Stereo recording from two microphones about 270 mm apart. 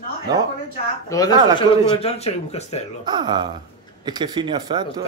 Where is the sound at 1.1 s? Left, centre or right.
Centre.